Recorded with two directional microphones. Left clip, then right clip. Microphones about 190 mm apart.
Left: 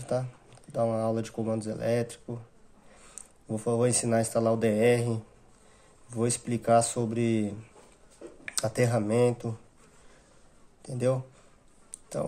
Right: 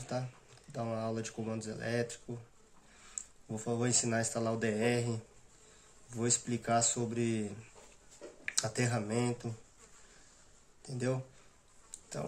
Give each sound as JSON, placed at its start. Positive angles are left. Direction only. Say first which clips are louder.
{"t": 0.1, "sound": "speech", "louder": "left 8 dB", "side_deg": 40}
{"t": 8.5, "sound": "speech", "louder": "left 8 dB", "side_deg": 45}
{"t": 10.8, "sound": "speech", "louder": "left 9 dB", "side_deg": 45}